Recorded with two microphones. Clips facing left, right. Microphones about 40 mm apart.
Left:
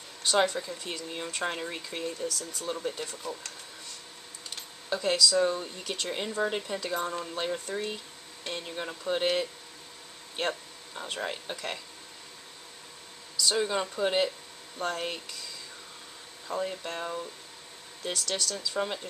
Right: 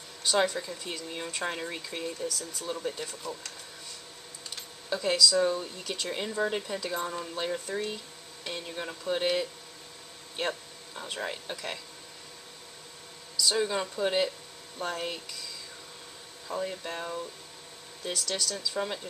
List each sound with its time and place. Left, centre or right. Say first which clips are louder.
0.2 s speech: left 1 dB; centre
4.8 s speech: even; centre
11.0 s speech: left 1 dB; centre
13.4 s speech: even; centre
16.4 s speech: left 1 dB; centre